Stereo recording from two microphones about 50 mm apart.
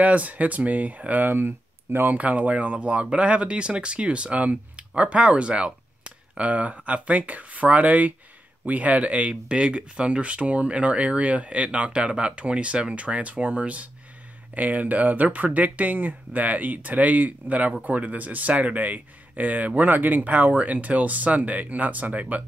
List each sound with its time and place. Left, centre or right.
0.0 s speech: right
2.1 s speech: right